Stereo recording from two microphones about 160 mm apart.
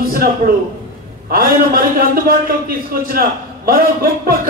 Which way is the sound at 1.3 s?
65° right (ahead or behind).